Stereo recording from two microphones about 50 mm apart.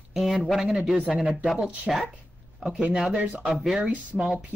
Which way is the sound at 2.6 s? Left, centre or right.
Centre.